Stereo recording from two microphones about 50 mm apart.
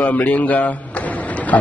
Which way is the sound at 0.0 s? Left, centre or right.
Left.